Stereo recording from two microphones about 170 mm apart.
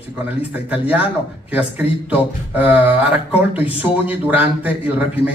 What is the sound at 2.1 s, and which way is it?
A man's voice, 10° right (ahead or behind).